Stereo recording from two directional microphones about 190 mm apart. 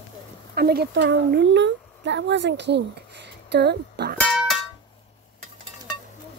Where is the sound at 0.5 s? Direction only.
55° right (ahead or behind).